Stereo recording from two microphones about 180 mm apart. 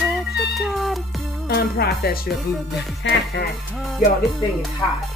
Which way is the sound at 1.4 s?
60° left (ahead or behind).